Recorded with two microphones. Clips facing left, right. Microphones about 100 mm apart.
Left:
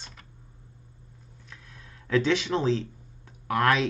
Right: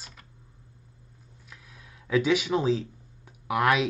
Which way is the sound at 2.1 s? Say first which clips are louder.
Even; 10° right (ahead or behind).